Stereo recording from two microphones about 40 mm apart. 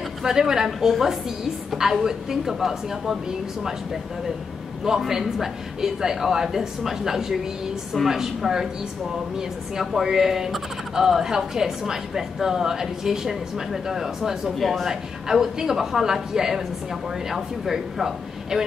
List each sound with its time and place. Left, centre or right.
0.2 s speech: centre
9.8 s speech: centre
14.6 s speech: centre
14.9 s speech: centre